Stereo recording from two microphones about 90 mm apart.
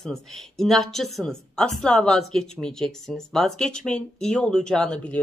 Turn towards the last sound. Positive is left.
turn(degrees=10)  # may be behind; listen again after turning